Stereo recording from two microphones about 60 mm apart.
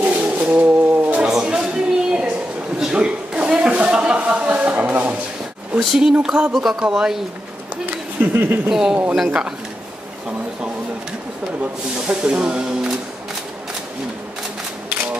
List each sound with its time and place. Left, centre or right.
0.0 s bird: right
1.4 s a sound: centre
5.8 s speech: centre
7.7 s a sound: right
8.6 s speech: centre
12.1 s speech: centre